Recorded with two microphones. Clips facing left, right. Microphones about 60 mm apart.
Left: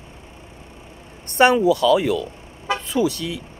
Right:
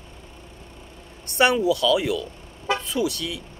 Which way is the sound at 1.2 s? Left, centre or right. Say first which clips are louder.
Left 4 dB; left.